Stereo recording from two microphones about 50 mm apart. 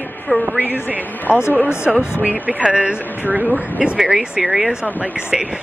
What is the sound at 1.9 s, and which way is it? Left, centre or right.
Speech, centre.